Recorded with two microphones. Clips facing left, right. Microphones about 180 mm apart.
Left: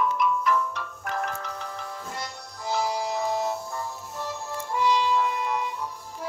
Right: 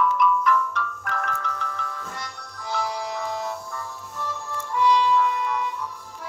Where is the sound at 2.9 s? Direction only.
35° left (ahead or behind).